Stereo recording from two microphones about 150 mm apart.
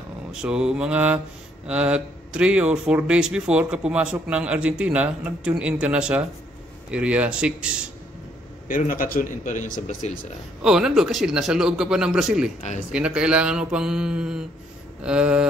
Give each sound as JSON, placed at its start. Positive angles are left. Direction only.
{"t": 0.3, "sound": "speech", "side_deg": -5}
{"t": 8.6, "sound": "speech", "side_deg": 65}
{"t": 10.6, "sound": "a man's voice", "side_deg": -5}